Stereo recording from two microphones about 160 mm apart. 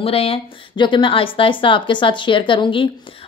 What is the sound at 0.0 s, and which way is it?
A woman's voice, 40° left (ahead or behind).